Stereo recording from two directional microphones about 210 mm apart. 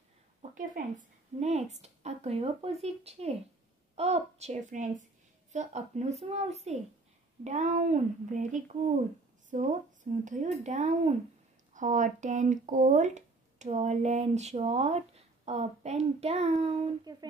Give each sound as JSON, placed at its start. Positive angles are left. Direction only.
{"t": 0.4, "sound": "speech", "side_deg": -40}